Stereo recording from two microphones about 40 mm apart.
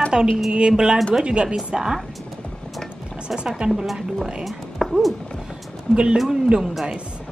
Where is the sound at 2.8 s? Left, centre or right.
Right.